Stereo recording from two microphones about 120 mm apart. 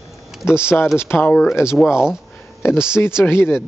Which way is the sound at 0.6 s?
20° left (ahead or behind).